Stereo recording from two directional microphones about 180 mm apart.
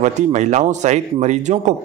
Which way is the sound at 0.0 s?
40° right (ahead or behind).